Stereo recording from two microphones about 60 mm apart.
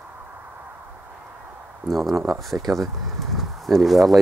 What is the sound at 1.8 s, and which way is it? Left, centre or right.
Speech, centre.